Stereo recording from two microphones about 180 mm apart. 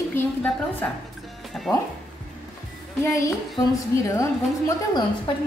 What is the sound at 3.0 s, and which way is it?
Speech, 15° left (ahead or behind).